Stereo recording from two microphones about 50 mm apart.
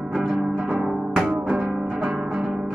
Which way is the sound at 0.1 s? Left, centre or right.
Centre.